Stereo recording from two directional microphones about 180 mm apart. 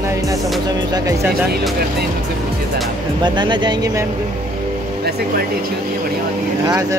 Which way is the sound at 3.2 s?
25° right (ahead or behind).